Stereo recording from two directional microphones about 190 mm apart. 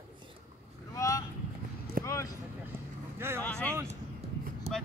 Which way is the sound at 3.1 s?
15° right (ahead or behind).